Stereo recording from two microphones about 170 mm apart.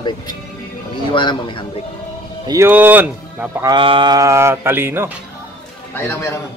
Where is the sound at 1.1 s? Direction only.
30° left (ahead or behind).